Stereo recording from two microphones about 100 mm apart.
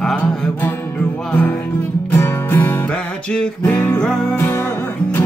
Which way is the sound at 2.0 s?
20° left (ahead or behind).